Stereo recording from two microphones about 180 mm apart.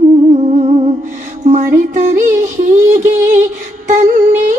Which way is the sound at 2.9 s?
45° right (ahead or behind).